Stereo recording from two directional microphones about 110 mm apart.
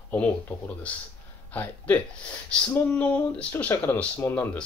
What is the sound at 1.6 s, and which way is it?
Speech, 15° left (ahead or behind).